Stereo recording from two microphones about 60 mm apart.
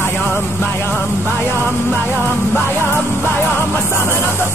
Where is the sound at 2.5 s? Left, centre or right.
Left.